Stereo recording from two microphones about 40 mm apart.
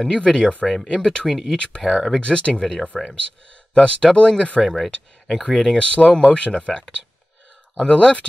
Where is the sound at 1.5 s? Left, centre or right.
Left.